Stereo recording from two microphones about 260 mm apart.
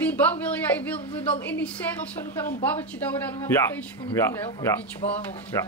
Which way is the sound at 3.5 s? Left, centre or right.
Centre.